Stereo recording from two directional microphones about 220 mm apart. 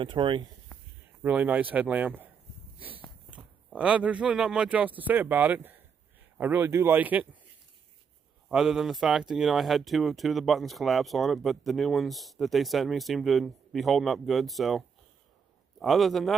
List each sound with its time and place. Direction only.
0.0 s speech: 20° right (ahead or behind)
1.2 s speech: 5° right (ahead or behind)
8.5 s speech: centre (ahead or behind)